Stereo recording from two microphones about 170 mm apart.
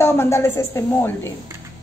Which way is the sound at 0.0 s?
15° left (ahead or behind).